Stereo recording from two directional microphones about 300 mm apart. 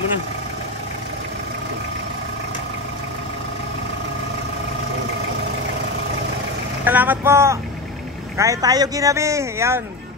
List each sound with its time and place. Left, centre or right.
6.8 s speech: centre